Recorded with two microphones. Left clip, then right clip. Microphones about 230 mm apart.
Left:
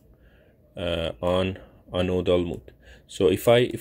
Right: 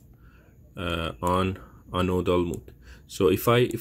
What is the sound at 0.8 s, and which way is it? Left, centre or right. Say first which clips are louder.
Speech: left 3 dB; centre.